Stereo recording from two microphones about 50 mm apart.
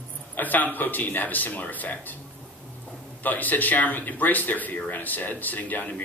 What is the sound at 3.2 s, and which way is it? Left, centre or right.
Speech, left.